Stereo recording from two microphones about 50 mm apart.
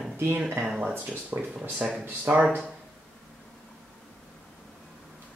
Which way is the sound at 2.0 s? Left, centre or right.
Right.